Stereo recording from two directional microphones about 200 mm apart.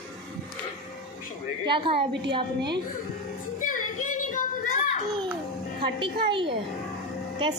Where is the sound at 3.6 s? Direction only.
40° left (ahead or behind).